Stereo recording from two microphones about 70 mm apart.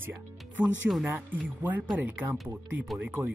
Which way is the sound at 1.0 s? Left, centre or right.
Right.